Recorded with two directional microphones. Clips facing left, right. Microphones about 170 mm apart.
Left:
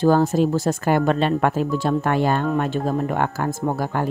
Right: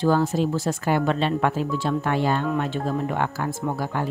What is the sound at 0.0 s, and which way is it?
Speech, 45° left (ahead or behind).